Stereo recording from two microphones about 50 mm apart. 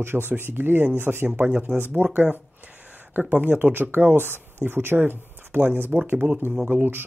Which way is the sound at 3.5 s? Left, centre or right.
Right.